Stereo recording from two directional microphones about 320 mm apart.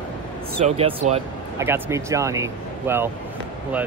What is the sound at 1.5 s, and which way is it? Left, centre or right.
Speech, centre.